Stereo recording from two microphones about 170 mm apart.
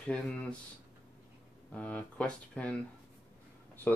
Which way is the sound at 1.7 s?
10° left (ahead or behind).